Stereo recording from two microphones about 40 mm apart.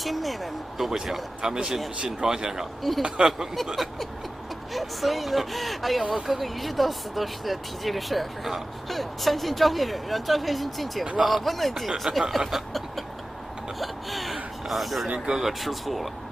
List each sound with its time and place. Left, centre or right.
0.0 s speech: centre
1.4 s speech: centre
3.7 s speech: centre
13.7 s a sound: centre
15.1 s speech: centre